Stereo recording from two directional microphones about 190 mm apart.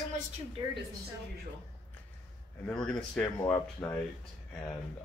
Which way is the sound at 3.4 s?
15° left (ahead or behind).